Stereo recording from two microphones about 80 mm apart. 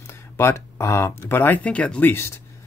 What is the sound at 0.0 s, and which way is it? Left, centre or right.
Speech, left.